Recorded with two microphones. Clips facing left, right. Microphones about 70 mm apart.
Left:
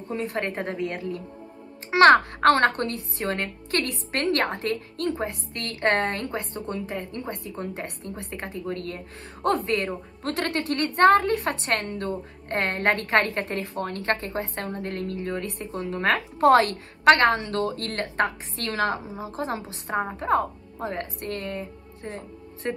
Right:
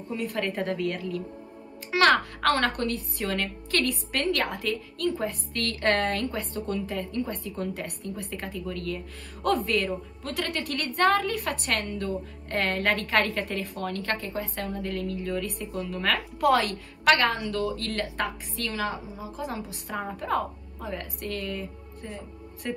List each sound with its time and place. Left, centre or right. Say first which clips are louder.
0.1 s a woman's voice: left 1 dB; left